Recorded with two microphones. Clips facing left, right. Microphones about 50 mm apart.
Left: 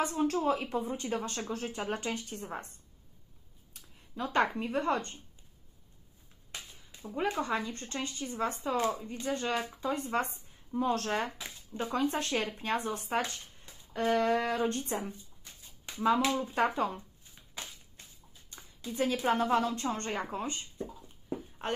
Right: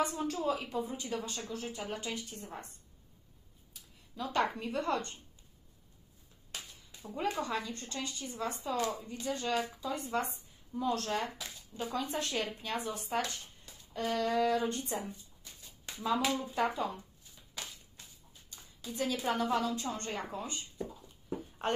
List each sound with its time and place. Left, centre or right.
0.0 s speech: left
4.1 s speech: left
7.2 s speech: left
8.8 s speech: left
9.3 s speech: left
16.5 s speech: left
17.6 s a sound: centre
18.5 s a sound: left
19.2 s speech: left